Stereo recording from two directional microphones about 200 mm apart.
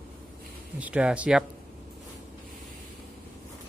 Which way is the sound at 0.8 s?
5° right (ahead or behind).